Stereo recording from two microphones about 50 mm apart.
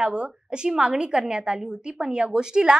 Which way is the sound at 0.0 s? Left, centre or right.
Centre.